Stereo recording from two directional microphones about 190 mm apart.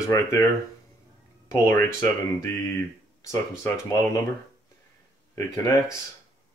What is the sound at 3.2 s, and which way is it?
Speech, 15° left (ahead or behind).